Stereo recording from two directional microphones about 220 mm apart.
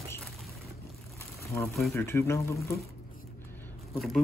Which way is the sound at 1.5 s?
Centre (ahead or behind).